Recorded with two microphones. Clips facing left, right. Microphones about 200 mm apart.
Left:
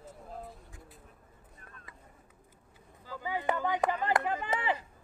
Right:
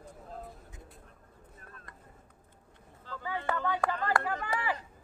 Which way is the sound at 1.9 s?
5° left (ahead or behind).